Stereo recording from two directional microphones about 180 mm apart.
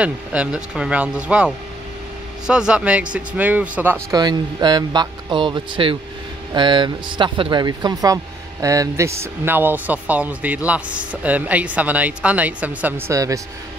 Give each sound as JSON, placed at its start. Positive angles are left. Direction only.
{"t": 0.0, "sound": "speech", "side_deg": -5}